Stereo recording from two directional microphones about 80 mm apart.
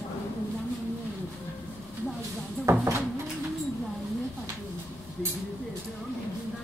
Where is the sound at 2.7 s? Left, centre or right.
Right.